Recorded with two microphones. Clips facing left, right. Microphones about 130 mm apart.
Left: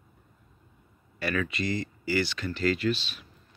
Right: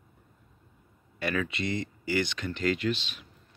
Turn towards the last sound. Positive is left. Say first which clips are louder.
# left 2 dB
turn(degrees=-20)  # may be behind; listen again after turning